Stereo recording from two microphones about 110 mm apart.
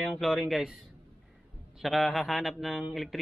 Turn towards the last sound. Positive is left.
turn(degrees=0)  # may be behind; listen again after turning